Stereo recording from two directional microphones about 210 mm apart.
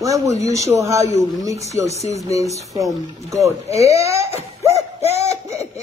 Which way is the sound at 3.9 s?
15° right (ahead or behind).